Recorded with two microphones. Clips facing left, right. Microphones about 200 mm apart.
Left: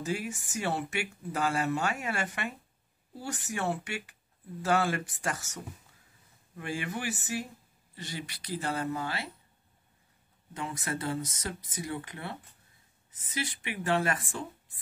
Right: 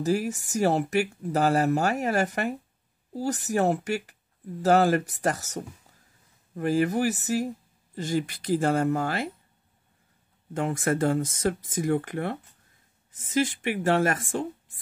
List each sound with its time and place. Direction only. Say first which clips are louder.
0.0 s speech: right 8 dB; 40° right (ahead or behind)
10.5 s speech: right 10 dB; 50° right (ahead or behind)